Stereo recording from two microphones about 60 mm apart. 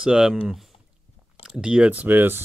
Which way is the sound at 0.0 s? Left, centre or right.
Centre.